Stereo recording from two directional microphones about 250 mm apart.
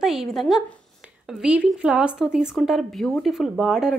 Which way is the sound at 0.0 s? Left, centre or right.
Centre.